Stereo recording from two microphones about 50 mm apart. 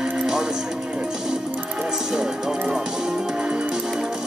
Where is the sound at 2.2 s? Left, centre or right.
Centre.